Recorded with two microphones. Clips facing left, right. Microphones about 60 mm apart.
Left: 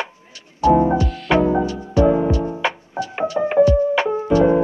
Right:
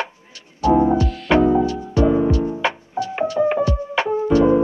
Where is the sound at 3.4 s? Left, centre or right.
Left.